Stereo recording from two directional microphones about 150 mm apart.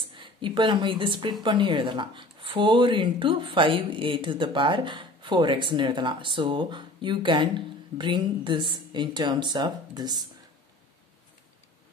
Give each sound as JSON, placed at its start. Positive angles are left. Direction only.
{"t": 0.1, "sound": "a woman's voice", "side_deg": -35}